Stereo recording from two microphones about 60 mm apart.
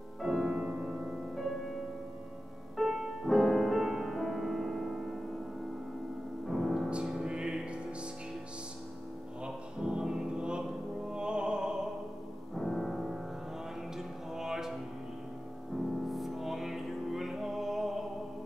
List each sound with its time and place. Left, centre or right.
0.2 s music: centre
2.8 s music: centre
6.4 s music: centre
6.9 s music: centre
9.4 s music: centre
11.1 s opera: centre
12.5 s music: centre
16.1 s music: centre